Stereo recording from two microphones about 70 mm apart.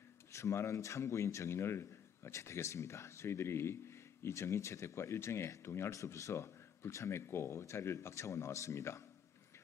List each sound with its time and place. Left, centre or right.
0.3 s speech: left